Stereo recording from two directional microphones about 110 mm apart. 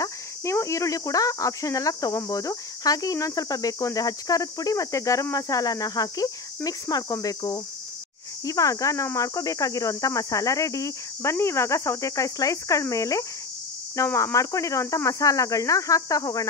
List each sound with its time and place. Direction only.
0.0 s speech: 30° left (ahead or behind)